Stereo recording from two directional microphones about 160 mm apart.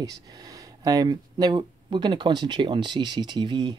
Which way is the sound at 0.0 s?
20° right (ahead or behind).